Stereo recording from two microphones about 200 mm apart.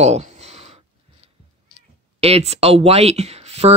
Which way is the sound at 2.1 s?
30° right (ahead or behind).